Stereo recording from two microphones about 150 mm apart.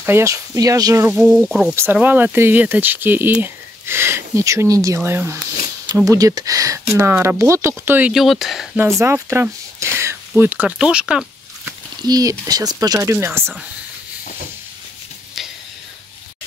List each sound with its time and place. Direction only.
0.0 s speech: 20° right (ahead or behind)
1.1 s speech: 5° right (ahead or behind)
8.1 s speech: centre (ahead or behind)
8.7 s speech: 15° right (ahead or behind)
9.9 s a sound: 15° right (ahead or behind)
12.0 s speech: 25° right (ahead or behind)